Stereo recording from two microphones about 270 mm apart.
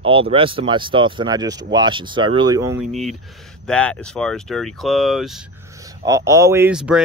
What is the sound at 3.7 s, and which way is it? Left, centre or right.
Speech, centre.